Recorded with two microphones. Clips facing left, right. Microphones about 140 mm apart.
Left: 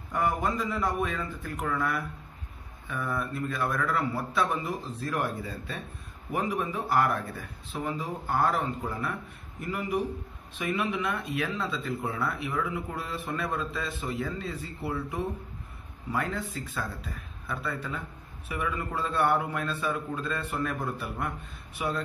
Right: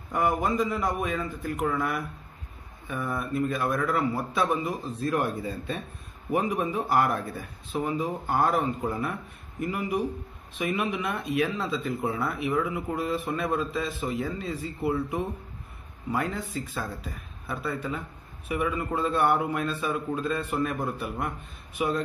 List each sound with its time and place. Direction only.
0.1 s a man's voice: 15° right (ahead or behind)
17.5 s a man's voice: 25° right (ahead or behind)